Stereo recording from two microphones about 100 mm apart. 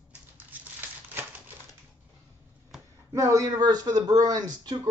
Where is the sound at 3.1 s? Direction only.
30° right (ahead or behind).